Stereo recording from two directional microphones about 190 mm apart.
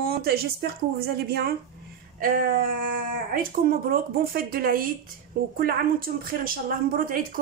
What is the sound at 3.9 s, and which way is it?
A woman's voice, 50° right (ahead or behind).